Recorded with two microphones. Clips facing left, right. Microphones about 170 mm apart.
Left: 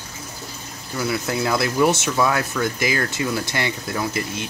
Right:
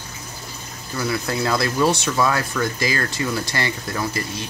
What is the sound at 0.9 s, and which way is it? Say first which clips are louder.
Speech: even; 10° left (ahead or behind).